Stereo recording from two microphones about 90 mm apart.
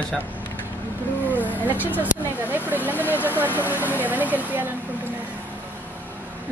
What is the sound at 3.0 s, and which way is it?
Vehicle, 20° left (ahead or behind).